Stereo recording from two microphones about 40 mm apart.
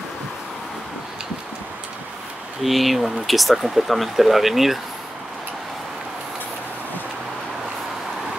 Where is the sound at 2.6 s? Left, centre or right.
Centre.